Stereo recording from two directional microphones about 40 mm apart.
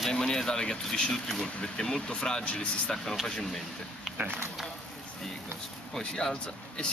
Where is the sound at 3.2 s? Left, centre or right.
Centre.